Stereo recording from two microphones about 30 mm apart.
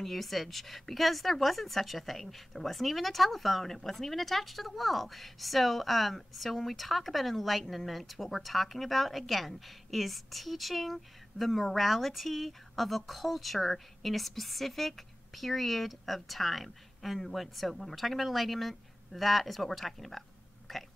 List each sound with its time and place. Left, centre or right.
0.0 s a woman's voice: centre